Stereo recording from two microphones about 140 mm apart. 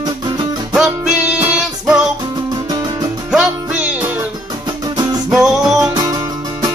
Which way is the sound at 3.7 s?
10° right (ahead or behind).